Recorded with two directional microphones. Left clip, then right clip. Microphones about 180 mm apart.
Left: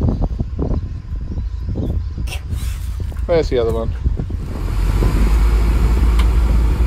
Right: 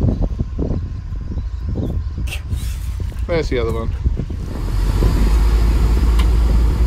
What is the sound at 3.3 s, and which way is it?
Speech, 15° left (ahead or behind).